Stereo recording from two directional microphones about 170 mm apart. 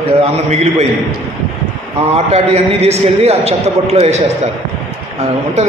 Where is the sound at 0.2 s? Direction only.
40° right (ahead or behind).